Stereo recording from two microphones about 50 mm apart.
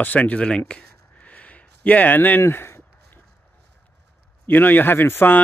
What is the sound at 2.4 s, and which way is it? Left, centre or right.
Speech, left.